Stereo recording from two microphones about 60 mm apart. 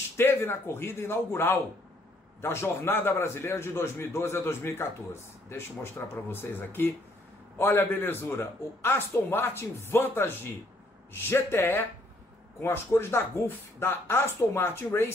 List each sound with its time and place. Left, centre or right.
0.2 s a man's voice: left